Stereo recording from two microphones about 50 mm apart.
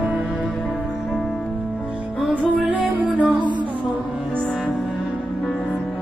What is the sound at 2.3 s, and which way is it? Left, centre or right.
Music, right.